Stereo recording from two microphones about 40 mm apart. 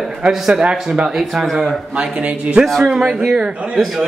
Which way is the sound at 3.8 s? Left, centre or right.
Centre.